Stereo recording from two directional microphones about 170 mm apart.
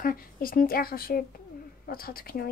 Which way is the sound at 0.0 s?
60° left (ahead or behind).